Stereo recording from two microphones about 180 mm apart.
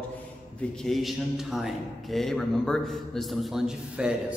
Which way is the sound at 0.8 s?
Centre (ahead or behind).